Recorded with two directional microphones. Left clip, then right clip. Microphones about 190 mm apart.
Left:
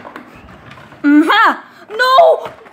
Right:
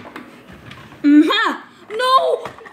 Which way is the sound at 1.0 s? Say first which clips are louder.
Left 4 dB; 10° left (ahead or behind).